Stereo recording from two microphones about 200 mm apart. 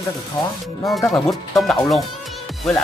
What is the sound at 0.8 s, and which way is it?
Speech, 15° left (ahead or behind).